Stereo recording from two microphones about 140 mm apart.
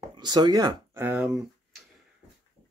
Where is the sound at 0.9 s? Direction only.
15° right (ahead or behind).